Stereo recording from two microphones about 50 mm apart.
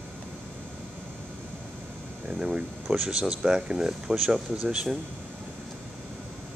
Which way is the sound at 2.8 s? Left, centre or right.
Centre.